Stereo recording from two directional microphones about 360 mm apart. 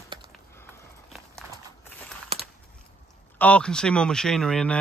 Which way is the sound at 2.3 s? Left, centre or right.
Centre.